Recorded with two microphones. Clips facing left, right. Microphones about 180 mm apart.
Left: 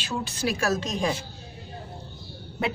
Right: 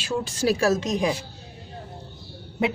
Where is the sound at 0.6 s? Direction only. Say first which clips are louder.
Right 4 dB; 20° right (ahead or behind).